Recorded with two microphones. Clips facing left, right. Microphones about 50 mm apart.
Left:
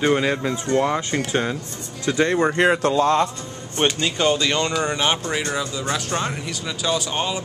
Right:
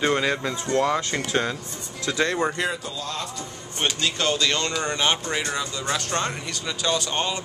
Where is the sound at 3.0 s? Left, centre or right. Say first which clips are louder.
Left 12 dB; left.